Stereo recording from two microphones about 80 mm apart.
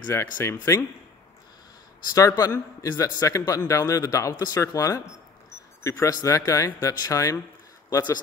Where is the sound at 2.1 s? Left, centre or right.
Left.